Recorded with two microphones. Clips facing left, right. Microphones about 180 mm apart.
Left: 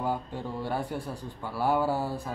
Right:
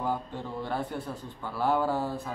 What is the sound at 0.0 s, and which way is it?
Speech, 10° left (ahead or behind).